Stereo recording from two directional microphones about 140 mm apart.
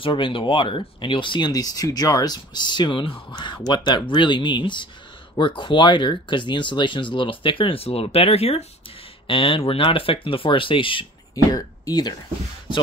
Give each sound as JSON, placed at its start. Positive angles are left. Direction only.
{"t": 0.0, "sound": "speech", "side_deg": 35}
{"t": 11.5, "sound": "speech", "side_deg": 25}